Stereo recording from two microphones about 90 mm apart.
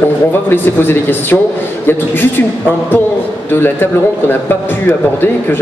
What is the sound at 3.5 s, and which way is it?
A man's voice, 25° left (ahead or behind).